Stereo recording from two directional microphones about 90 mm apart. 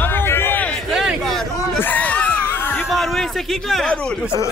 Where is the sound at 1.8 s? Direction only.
20° left (ahead or behind).